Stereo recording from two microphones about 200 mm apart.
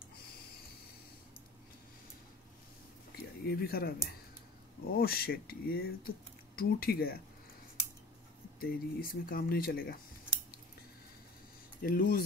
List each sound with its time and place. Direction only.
3.4 s speech: 50° left (ahead or behind)
4.9 s speech: 50° left (ahead or behind)
8.5 s speech: 45° left (ahead or behind)
11.8 s speech: 45° left (ahead or behind)